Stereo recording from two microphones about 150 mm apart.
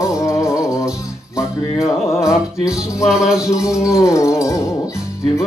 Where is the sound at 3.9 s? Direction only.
20° left (ahead or behind).